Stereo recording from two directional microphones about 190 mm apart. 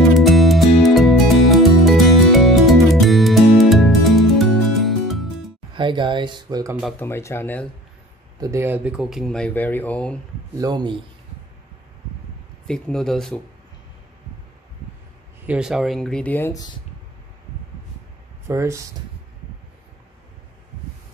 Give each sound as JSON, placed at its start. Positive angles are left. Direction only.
{"t": 0.1, "sound": "music", "side_deg": 0}
{"t": 5.7, "sound": "speech", "side_deg": -25}
{"t": 7.0, "sound": "speech", "side_deg": 15}
{"t": 8.4, "sound": "speech", "side_deg": -15}
{"t": 10.6, "sound": "speech", "side_deg": -25}
{"t": 12.6, "sound": "speech", "side_deg": 5}
{"t": 15.4, "sound": "speech", "side_deg": -5}
{"t": 18.5, "sound": "speech", "side_deg": -15}